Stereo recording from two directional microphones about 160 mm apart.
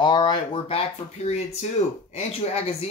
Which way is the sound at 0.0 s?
30° left (ahead or behind).